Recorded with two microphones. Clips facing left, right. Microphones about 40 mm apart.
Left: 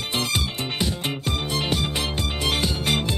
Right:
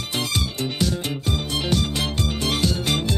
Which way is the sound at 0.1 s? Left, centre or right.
Left.